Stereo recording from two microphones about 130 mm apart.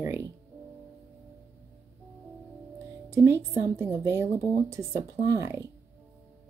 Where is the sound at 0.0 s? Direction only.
20° right (ahead or behind).